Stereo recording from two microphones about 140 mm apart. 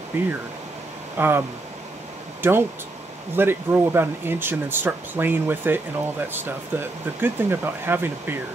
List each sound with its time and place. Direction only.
0.1 s speech: 15° right (ahead or behind)
2.4 s speech: 15° right (ahead or behind)